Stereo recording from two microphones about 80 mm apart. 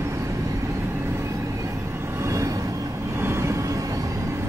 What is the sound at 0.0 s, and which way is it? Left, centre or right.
Vehicle, right.